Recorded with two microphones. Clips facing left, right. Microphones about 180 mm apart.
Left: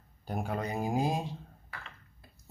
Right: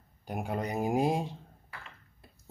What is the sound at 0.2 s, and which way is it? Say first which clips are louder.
Mantra: even; 15° right (ahead or behind).